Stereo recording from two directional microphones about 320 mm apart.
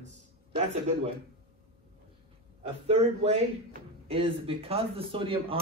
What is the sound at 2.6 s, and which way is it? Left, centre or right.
A man's voice, centre.